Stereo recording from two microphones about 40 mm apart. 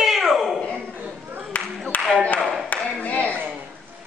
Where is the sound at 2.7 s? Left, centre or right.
Left.